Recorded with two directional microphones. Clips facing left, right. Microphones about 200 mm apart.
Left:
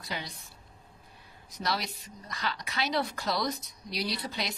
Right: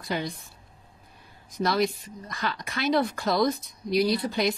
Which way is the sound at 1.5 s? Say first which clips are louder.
Right 9 dB; 50° right (ahead or behind).